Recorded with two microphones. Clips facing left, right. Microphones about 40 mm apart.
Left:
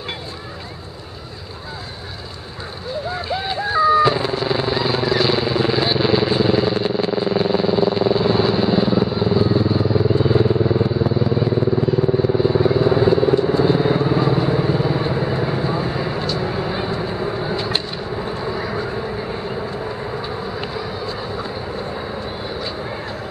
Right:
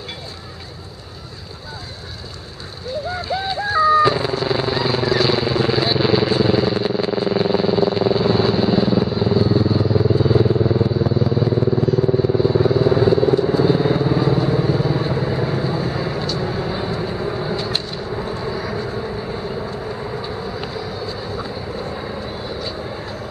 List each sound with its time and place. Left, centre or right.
3.1 s vehicle: centre